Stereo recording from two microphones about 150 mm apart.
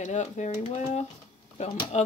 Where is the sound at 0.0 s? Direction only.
55° left (ahead or behind).